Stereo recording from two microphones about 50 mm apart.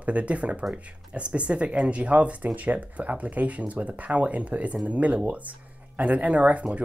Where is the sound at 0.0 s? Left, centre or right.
Right.